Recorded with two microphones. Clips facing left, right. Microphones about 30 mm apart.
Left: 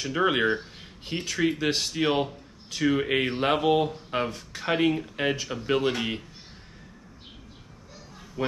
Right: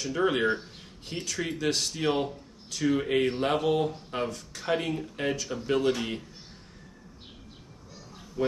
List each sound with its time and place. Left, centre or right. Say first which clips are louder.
0.0 s speech: left 2 dB; left
8.4 s speech: right 1 dB; left